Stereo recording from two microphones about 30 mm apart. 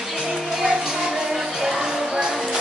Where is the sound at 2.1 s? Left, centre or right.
Right.